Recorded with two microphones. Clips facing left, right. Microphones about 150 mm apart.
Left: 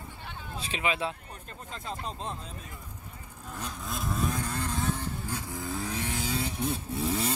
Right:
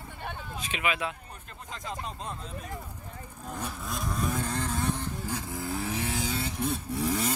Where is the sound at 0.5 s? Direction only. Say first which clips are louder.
Left 1 dB; 30° left (ahead or behind).